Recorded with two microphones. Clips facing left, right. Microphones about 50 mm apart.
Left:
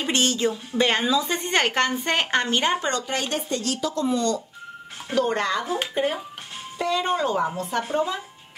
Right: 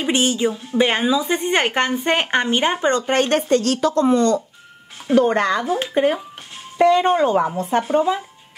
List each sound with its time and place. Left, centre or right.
0.0 s a woman's voice: centre; by 3.2 s right
3.2 s speech: right
6.8 s a woman's voice: right
7.9 s speech: centre